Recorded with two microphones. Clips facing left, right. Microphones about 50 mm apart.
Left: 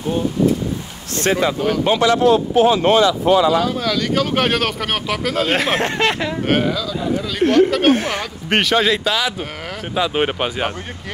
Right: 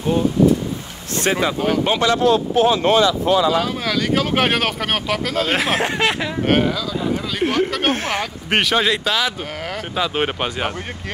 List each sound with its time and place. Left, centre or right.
1.1 s speech: centre
2.0 s a man's voice: left
2.6 s speech: left
3.6 s speech: centre